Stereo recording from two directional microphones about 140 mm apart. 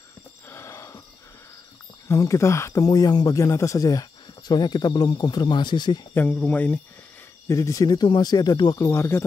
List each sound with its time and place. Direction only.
0.5 s a sound: 20° left (ahead or behind)
2.0 s speech: 20° left (ahead or behind)
6.1 s speech: 10° left (ahead or behind)
7.4 s speech: 20° left (ahead or behind)